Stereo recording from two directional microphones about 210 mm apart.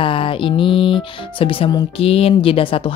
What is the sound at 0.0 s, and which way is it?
A woman's voice, 25° left (ahead or behind).